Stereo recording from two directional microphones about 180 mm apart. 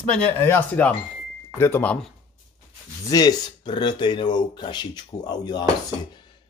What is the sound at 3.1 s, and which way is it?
Speech, 20° left (ahead or behind).